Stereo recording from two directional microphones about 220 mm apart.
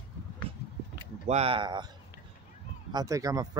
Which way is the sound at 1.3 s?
25° right (ahead or behind).